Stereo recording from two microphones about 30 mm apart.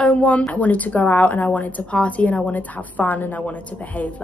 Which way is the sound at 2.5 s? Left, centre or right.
Left.